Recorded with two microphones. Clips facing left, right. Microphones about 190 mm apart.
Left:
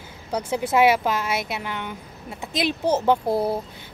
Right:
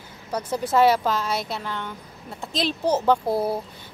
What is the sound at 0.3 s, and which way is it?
Speech, 10° left (ahead or behind).